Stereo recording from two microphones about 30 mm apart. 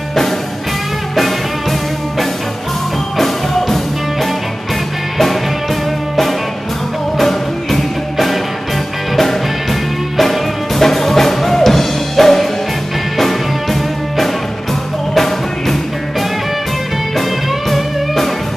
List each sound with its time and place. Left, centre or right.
1.1 s music: centre
7.2 s music: centre
10.3 s music: centre